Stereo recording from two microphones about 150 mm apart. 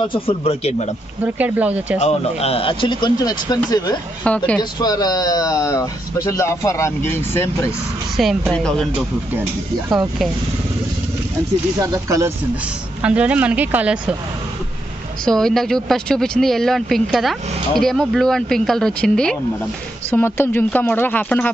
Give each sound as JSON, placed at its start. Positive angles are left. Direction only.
{"t": 0.1, "sound": "speech", "side_deg": 40}
{"t": 1.2, "sound": "speech", "side_deg": -10}
{"t": 2.0, "sound": "speech", "side_deg": 45}
{"t": 4.2, "sound": "speech", "side_deg": 10}
{"t": 4.6, "sound": "speech", "side_deg": 25}
{"t": 8.2, "sound": "speech", "side_deg": 0}
{"t": 9.8, "sound": "speech", "side_deg": -5}
{"t": 11.8, "sound": "speech", "side_deg": -20}
{"t": 13.0, "sound": "speech", "side_deg": -10}
{"t": 15.2, "sound": "speech", "side_deg": 5}